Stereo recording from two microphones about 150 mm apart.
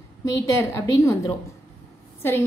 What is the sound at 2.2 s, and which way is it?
Speech, 15° left (ahead or behind).